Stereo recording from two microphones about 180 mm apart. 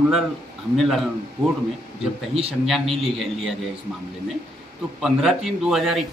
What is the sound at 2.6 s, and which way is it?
Speech, centre (ahead or behind).